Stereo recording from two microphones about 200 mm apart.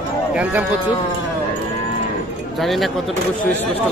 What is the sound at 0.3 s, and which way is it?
Speech, 5° right (ahead or behind).